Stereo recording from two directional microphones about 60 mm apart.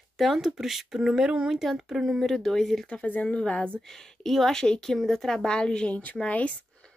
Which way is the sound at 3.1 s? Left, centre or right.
Left.